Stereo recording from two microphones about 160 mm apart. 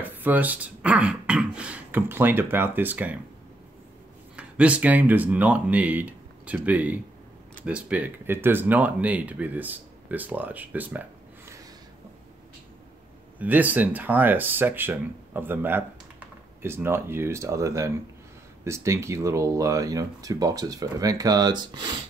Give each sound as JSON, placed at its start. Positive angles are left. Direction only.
{"t": 0.0, "sound": "speech", "side_deg": -10}
{"t": 4.4, "sound": "speech", "side_deg": -10}
{"t": 13.4, "sound": "speech", "side_deg": -10}